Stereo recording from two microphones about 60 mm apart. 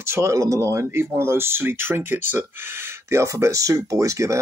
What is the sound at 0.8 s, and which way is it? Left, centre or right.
Speech, right.